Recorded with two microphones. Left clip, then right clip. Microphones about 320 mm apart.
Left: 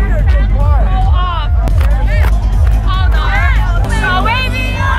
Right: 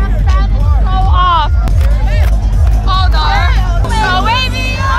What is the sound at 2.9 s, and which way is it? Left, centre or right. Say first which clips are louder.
Music: right 5 dB; centre.